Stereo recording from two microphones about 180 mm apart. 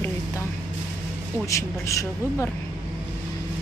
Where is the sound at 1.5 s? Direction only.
15° left (ahead or behind).